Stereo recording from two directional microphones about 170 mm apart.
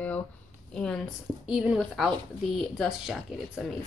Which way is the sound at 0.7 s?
5° left (ahead or behind).